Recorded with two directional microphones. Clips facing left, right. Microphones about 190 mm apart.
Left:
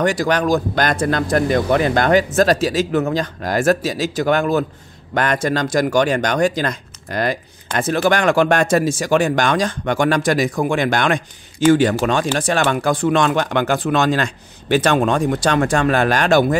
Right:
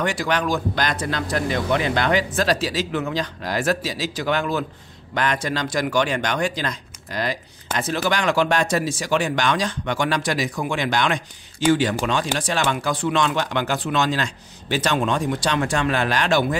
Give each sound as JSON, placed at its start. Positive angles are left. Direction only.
{"t": 0.0, "sound": "speech", "side_deg": 40}